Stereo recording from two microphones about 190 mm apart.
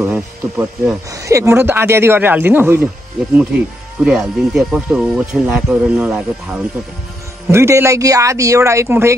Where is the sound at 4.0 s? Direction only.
5° right (ahead or behind).